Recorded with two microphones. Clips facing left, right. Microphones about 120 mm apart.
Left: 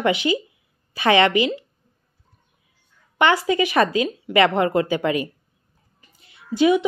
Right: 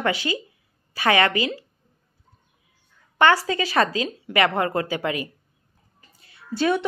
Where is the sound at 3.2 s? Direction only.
20° left (ahead or behind).